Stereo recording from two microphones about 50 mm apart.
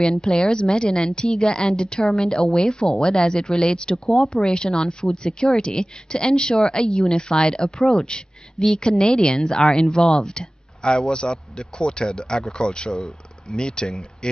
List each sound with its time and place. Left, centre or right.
0.0 s speech: centre